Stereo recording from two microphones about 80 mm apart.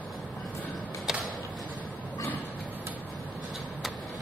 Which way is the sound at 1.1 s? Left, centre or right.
Centre.